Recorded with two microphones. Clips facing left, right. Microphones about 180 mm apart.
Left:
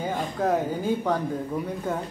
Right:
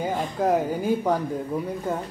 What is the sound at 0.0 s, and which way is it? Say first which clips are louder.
A woman's voice: right 2 dB; 10° right (ahead or behind).